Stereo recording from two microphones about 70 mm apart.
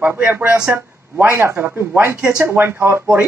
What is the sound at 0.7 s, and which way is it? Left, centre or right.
Speech, right.